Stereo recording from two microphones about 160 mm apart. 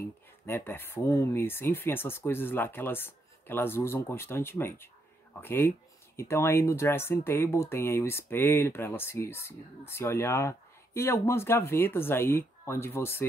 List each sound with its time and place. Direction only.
0.5 s speech: 15° left (ahead or behind)